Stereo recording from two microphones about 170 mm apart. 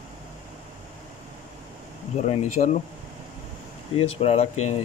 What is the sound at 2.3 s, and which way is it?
Speech, 40° left (ahead or behind).